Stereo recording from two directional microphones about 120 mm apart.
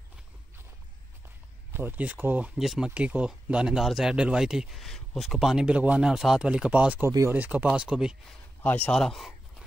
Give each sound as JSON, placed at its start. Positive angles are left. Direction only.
{"t": 1.7, "sound": "speech", "side_deg": -15}
{"t": 2.5, "sound": "speech", "side_deg": -5}
{"t": 7.1, "sound": "speech", "side_deg": -25}
{"t": 7.3, "sound": "speech", "side_deg": -15}
{"t": 8.6, "sound": "speech", "side_deg": 15}
{"t": 8.9, "sound": "a sound", "side_deg": 0}